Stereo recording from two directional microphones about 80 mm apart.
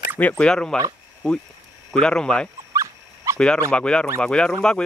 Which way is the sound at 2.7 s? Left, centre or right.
Right.